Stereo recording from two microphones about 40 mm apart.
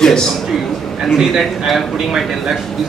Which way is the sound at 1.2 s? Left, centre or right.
Centre.